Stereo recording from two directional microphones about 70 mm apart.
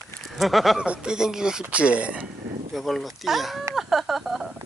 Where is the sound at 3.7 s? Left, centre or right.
Centre.